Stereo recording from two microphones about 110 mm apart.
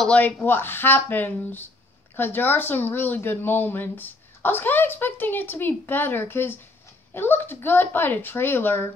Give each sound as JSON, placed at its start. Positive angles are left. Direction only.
{"t": 0.0, "sound": "speech", "side_deg": 15}